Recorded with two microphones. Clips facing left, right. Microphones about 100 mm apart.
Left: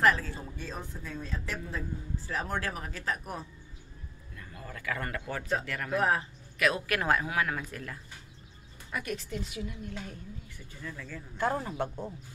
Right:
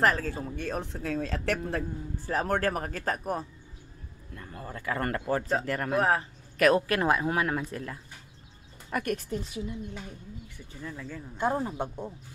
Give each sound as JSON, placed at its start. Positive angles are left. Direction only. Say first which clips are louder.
{"t": 0.0, "sound": "speech", "louder": "right 1 dB", "side_deg": -45}
{"t": 1.6, "sound": "a man's voice", "louder": "right 5 dB", "side_deg": -55}
{"t": 7.3, "sound": "speech", "louder": "right 3 dB", "side_deg": -30}
{"t": 8.9, "sound": "speech", "louder": "right 5 dB", "side_deg": -50}
{"t": 9.4, "sound": "speech", "louder": "right 2 dB", "side_deg": -30}
{"t": 9.8, "sound": "speech", "louder": "even", "side_deg": -20}